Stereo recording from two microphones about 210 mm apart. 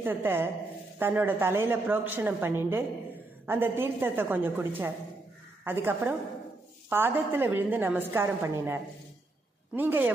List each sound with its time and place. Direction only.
0.0 s a woman's voice: 10° right (ahead or behind)